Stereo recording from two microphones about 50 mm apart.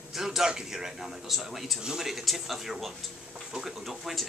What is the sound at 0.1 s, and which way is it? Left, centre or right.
A man's voice, centre.